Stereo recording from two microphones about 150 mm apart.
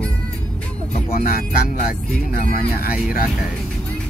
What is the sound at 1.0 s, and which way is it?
Speech, 80° left.